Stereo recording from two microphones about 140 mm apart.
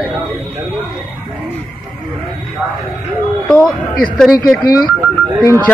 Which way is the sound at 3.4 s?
5° left (ahead or behind).